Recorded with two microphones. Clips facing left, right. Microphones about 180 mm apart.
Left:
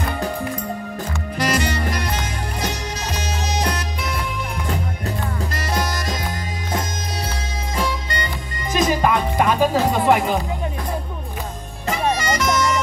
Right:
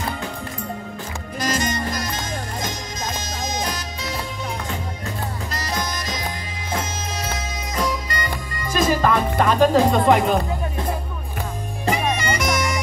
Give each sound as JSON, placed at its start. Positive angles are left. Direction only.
{"t": 1.4, "sound": "music", "side_deg": 65}
{"t": 5.6, "sound": "music", "side_deg": 55}
{"t": 8.7, "sound": "music", "side_deg": 15}
{"t": 12.2, "sound": "bagpipes", "side_deg": -15}